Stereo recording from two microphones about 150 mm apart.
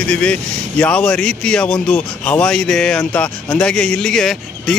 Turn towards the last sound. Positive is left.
turn(degrees=0)  # may be behind; listen again after turning